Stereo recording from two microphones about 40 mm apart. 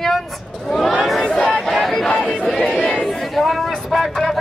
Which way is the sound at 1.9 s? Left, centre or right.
Centre.